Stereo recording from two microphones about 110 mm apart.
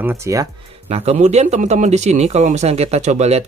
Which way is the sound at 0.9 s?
75° right (ahead or behind).